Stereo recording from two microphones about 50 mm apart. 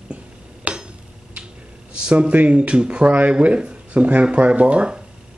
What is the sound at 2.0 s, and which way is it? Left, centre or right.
Speech, right.